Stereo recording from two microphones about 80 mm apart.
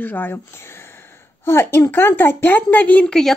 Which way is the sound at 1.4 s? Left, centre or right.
Left.